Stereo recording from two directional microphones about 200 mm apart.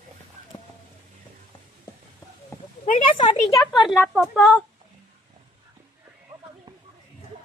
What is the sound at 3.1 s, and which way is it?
Speech, 30° left (ahead or behind).